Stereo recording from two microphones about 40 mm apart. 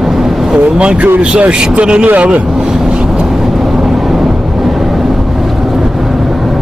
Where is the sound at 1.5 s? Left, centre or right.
Right.